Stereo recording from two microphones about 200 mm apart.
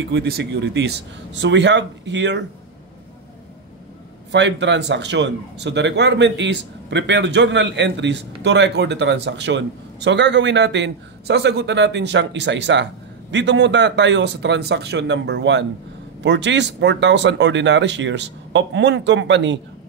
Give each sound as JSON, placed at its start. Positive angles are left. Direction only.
{"t": 0.1, "sound": "a man's voice", "side_deg": -55}
{"t": 4.3, "sound": "a man's voice", "side_deg": -60}